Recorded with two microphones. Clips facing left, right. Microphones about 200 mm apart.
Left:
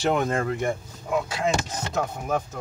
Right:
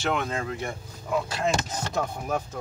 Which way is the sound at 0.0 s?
35° left (ahead or behind).